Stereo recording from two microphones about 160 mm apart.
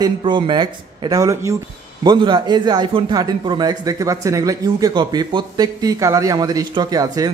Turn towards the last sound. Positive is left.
turn(degrees=-20)  # may be behind; listen again after turning